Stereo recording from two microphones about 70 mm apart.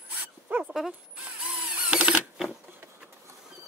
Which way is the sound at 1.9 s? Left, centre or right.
Centre.